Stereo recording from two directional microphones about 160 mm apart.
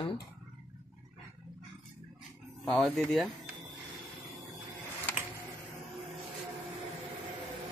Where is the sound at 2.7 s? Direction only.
5° left (ahead or behind).